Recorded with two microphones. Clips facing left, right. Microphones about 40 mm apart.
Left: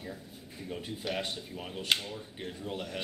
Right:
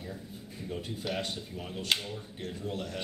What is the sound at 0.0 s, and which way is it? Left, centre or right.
Speech, centre.